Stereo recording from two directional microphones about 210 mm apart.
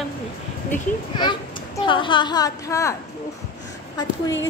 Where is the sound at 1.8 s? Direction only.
25° left (ahead or behind).